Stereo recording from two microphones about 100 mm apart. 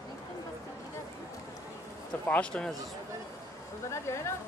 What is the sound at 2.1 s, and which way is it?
Speech, 10° left (ahead or behind).